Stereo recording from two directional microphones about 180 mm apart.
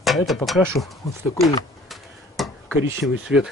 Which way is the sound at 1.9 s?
Centre (ahead or behind).